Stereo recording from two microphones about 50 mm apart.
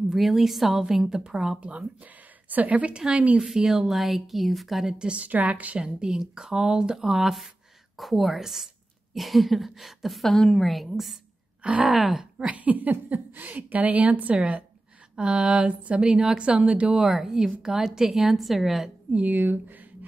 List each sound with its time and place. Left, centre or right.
0.1 s speech: centre
1.6 s a woman's voice: right
3.5 s a woman's voice: centre
4.9 s a woman's voice: right
5.9 s a woman's voice: centre
12.4 s a woman's voice: right
15.7 s a woman's voice: right
17.0 s a woman's voice: centre
19.1 s speech: right